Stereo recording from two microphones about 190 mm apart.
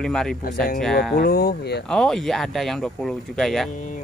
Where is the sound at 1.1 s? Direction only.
55° left (ahead or behind).